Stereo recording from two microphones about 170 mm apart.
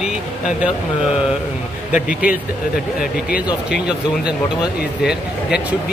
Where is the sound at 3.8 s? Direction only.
5° right (ahead or behind).